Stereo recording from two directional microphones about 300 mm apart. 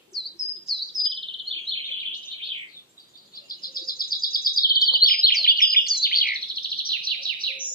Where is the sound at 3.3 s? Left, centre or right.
Left.